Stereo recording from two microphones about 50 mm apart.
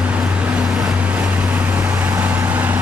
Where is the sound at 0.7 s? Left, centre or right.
Centre.